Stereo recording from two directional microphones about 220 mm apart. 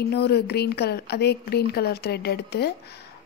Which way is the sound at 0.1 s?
50° left (ahead or behind).